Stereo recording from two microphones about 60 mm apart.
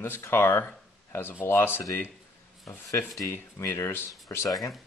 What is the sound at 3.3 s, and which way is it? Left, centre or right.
Speech, left.